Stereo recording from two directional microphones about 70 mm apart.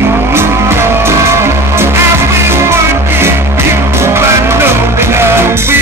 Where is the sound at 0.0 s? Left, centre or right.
Right.